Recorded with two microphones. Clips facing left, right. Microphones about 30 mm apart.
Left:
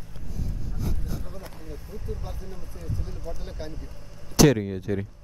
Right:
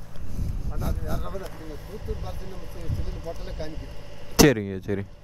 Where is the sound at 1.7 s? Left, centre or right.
Right.